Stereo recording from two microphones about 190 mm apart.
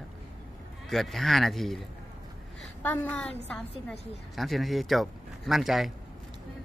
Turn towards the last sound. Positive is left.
turn(degrees=0)  # may be behind; listen again after turning